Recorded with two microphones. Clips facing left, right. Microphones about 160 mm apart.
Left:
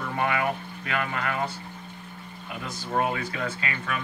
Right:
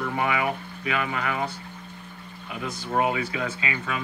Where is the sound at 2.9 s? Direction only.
10° right (ahead or behind).